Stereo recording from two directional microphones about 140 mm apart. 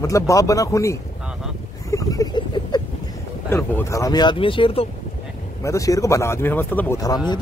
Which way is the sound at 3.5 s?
15° left (ahead or behind).